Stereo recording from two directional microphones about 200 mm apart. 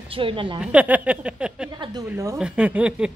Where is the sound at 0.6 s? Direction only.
5° right (ahead or behind).